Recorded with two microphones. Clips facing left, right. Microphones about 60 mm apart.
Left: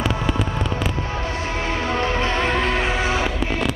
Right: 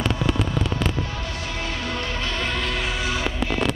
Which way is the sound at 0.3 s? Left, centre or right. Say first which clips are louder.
Left 1 dB; centre.